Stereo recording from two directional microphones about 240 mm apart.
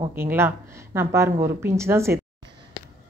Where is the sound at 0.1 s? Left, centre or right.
Centre.